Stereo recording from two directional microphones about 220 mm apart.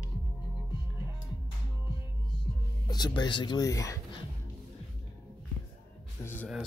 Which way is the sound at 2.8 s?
20° left (ahead or behind).